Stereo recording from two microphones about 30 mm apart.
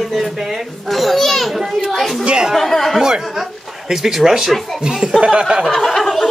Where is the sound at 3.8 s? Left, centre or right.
Centre.